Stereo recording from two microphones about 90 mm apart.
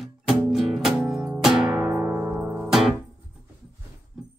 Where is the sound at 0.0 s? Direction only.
Centre (ahead or behind).